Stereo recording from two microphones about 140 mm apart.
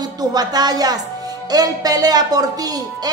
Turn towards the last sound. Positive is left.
turn(degrees=-25)  # may be behind; listen again after turning